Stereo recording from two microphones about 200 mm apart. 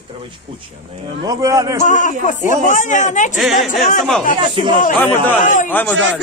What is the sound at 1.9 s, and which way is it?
Speech, 40° left (ahead or behind).